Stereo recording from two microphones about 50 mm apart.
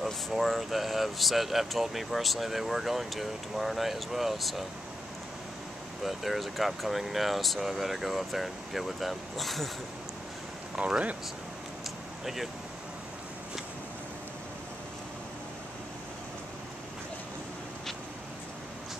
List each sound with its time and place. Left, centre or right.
0.0 s speech: centre
6.0 s speech: centre
10.8 s speech: right